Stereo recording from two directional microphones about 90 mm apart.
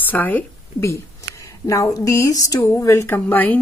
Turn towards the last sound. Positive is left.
turn(degrees=20)  # may be behind; listen again after turning